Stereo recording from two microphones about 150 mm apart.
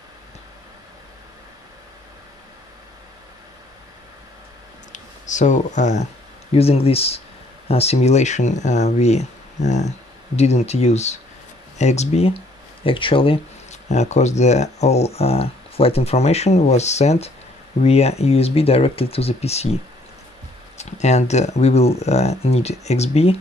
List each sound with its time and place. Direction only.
4.9 s speech: 55° left (ahead or behind)
6.5 s speech: 40° left (ahead or behind)